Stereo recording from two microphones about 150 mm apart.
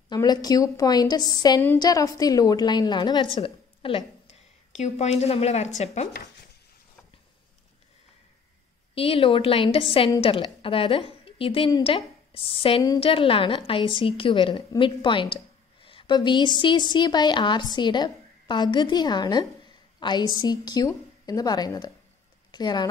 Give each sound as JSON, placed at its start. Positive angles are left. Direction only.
{"t": 0.1, "sound": "a woman's voice", "side_deg": 25}
{"t": 3.3, "sound": "a sound", "side_deg": 35}
{"t": 4.7, "sound": "a woman's voice", "side_deg": 50}
{"t": 8.9, "sound": "a woman's voice", "side_deg": 35}